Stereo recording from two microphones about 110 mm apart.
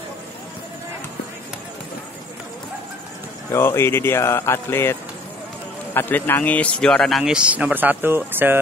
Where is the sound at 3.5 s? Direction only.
20° left (ahead or behind).